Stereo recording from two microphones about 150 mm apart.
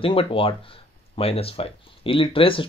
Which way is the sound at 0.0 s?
35° left (ahead or behind).